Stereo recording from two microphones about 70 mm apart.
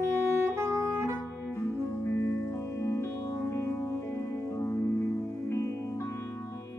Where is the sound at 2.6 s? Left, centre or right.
Left.